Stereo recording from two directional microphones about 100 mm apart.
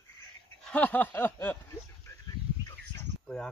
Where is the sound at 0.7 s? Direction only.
15° left (ahead or behind).